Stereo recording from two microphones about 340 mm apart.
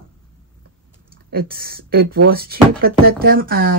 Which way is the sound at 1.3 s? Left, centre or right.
Right.